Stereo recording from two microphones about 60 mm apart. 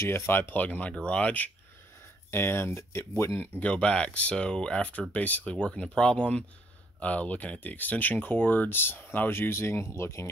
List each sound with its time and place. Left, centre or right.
0.0 s speech: left
2.3 s speech: left
3.3 s speech: left
5.1 s speech: left